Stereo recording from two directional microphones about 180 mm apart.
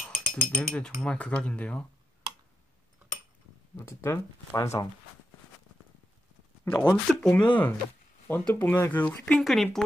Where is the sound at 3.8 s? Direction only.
15° left (ahead or behind).